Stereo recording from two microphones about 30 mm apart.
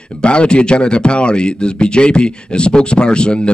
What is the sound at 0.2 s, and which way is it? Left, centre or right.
Speech, left.